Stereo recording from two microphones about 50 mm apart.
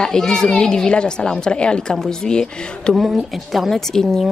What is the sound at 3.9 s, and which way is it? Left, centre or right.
Speech, centre.